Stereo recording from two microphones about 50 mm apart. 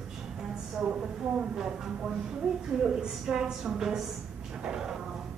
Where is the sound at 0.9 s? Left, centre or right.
Centre.